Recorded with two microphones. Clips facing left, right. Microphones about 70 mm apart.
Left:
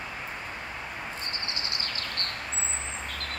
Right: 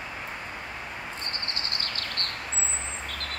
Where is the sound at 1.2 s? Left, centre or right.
Right.